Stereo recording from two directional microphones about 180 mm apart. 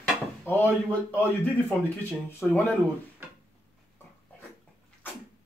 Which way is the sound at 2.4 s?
Centre (ahead or behind).